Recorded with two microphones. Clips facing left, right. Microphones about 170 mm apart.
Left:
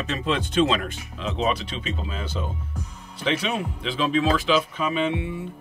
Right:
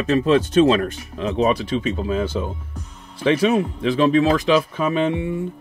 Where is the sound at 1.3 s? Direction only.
50° right (ahead or behind).